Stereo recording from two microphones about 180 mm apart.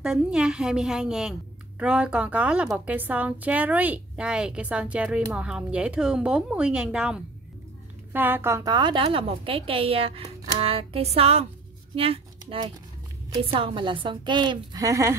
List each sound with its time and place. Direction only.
0.0 s a woman's voice: 5° right (ahead or behind)